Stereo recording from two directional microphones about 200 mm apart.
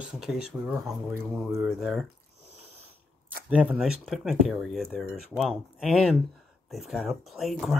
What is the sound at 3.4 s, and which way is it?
Speech, 5° right (ahead or behind).